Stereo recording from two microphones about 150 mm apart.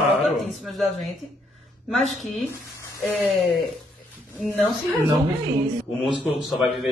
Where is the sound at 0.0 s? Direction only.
Centre (ahead or behind).